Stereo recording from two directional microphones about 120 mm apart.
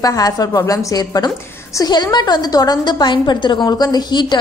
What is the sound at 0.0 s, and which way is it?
A woman's voice, 30° left (ahead or behind).